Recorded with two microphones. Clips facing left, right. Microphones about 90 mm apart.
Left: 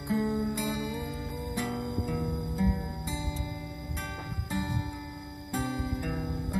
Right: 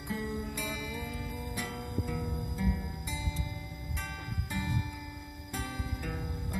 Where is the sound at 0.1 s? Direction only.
20° left (ahead or behind).